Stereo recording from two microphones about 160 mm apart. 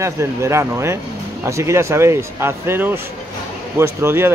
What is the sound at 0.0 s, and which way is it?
Speech, 20° right (ahead or behind).